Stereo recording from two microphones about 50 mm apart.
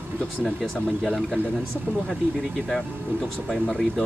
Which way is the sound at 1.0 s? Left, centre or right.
Centre.